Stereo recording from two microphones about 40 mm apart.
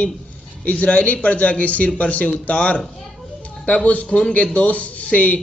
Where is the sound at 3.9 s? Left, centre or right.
Left.